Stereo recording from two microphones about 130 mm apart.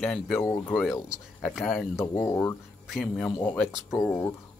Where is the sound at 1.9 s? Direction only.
15° left (ahead or behind).